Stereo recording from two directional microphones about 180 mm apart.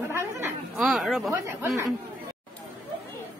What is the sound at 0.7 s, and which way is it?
Speech, centre (ahead or behind).